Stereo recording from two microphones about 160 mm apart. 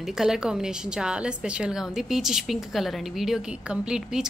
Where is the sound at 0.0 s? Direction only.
5° right (ahead or behind).